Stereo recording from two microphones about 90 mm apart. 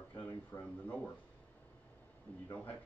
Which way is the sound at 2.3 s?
20° left (ahead or behind).